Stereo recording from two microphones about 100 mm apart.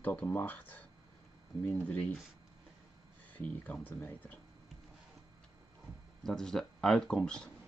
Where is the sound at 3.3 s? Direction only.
15° left (ahead or behind).